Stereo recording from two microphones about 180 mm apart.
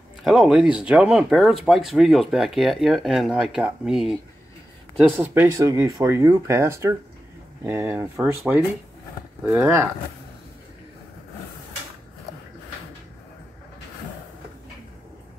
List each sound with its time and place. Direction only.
0.2 s speech: centre (ahead or behind)